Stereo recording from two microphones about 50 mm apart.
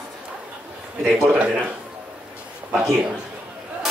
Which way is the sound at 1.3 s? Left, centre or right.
Right.